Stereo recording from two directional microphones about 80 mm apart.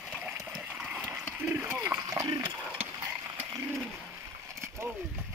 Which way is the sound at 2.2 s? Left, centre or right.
Right.